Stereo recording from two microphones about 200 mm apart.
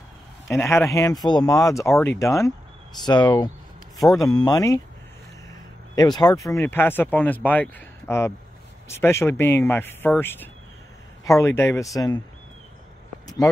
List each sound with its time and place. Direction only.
0.5 s speech: 15° left (ahead or behind)